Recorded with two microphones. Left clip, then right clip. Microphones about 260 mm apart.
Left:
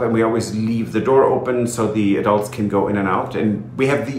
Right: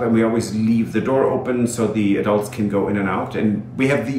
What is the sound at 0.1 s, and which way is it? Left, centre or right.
Speech, centre.